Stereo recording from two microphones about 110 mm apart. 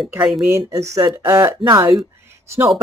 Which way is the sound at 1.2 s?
45° right (ahead or behind).